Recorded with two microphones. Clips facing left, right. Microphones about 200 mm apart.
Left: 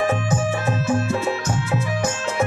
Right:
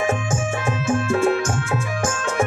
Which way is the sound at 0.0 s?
50° right (ahead or behind).